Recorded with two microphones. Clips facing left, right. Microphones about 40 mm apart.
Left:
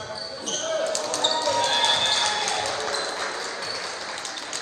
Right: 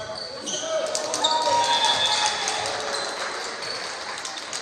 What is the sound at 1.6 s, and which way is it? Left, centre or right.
Music, left.